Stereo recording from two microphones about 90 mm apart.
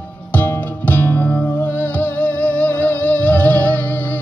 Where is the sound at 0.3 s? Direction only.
20° left (ahead or behind).